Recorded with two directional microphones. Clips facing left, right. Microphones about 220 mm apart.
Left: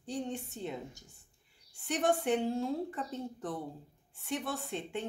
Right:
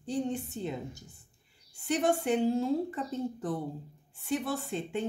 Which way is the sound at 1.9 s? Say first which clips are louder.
Right 2 dB; centre (ahead or behind).